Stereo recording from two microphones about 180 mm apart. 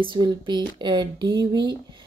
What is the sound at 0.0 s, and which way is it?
Speech, 25° right (ahead or behind).